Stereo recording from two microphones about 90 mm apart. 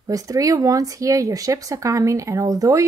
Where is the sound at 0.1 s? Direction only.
40° right (ahead or behind).